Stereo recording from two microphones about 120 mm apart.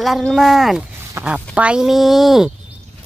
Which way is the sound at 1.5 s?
10° right (ahead or behind).